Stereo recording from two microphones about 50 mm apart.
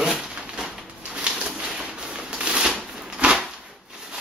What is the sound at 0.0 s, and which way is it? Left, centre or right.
Dog, centre.